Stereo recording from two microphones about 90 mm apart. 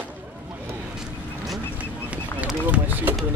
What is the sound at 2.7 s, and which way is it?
Run, 20° right (ahead or behind).